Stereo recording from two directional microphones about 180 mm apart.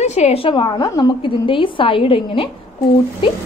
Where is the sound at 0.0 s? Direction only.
35° left (ahead or behind).